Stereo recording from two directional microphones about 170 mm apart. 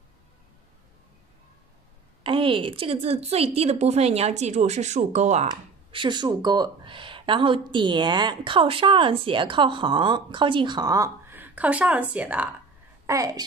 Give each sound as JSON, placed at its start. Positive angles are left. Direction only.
{"t": 2.2, "sound": "a woman's voice", "side_deg": -30}
{"t": 5.5, "sound": "speech", "side_deg": -30}
{"t": 13.0, "sound": "a woman's voice", "side_deg": -20}